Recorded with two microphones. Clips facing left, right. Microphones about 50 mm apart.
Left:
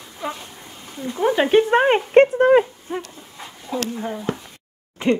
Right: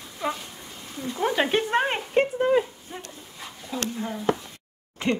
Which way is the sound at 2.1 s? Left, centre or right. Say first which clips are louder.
Left 8 dB; left.